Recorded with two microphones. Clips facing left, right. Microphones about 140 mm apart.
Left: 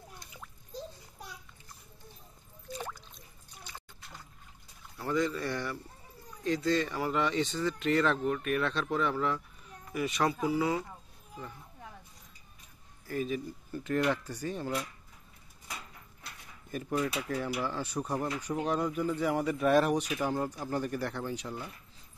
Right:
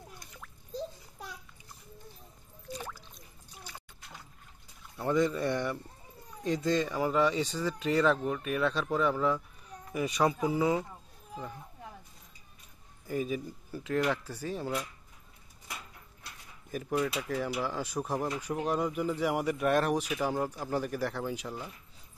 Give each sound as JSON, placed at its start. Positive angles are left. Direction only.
{"t": 4.9, "sound": "speech", "side_deg": -20}
{"t": 13.0, "sound": "speech", "side_deg": -15}
{"t": 16.7, "sound": "speech", "side_deg": -5}